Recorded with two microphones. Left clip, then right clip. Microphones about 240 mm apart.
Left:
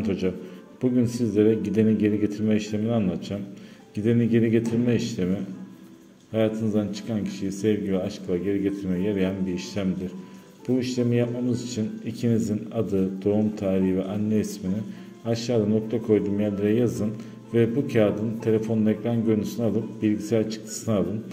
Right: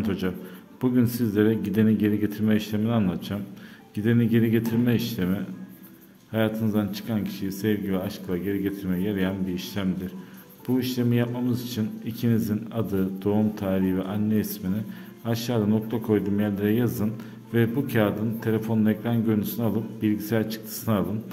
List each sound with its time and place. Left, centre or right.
0.0 s speech: centre